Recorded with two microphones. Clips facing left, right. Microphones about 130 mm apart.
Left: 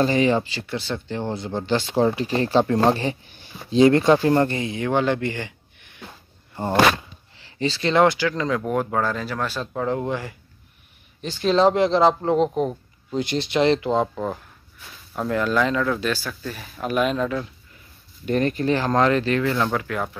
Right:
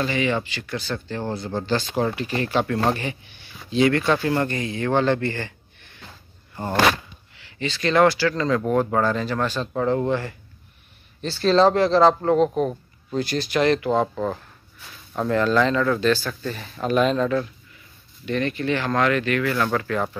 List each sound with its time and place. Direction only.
0.0 s speech: 35° left (ahead or behind)
3.5 s speech: 30° left (ahead or behind)
7.3 s speech: 35° left (ahead or behind)
14.1 s speech: 10° left (ahead or behind)
18.2 s speech: 40° left (ahead or behind)
19.5 s speech: 15° left (ahead or behind)